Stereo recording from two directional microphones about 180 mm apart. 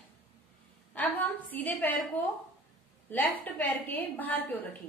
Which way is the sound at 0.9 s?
10° left (ahead or behind).